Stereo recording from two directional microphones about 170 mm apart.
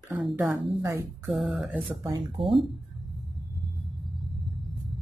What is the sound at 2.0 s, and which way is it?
Speech, 30° right (ahead or behind).